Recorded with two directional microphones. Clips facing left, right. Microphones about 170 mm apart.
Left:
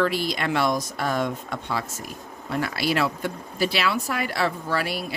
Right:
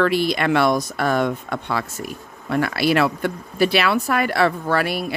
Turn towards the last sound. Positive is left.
turn(degrees=-60)  # may be behind; listen again after turning